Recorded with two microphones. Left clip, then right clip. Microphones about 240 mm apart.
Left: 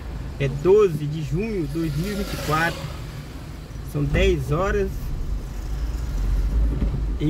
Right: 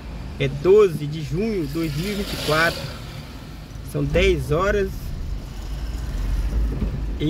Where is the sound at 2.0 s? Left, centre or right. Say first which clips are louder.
Right 3 dB; right.